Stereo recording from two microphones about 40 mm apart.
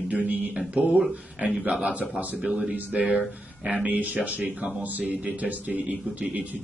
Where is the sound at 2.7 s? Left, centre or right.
Right.